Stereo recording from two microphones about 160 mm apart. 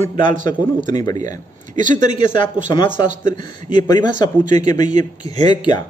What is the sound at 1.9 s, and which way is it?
Speech, 50° right (ahead or behind).